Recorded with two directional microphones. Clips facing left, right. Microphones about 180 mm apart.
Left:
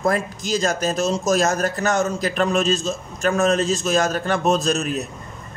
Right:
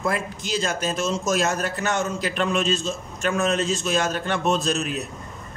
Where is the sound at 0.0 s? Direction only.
40° left (ahead or behind).